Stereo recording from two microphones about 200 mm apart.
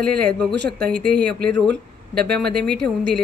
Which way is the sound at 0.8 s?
50° right (ahead or behind).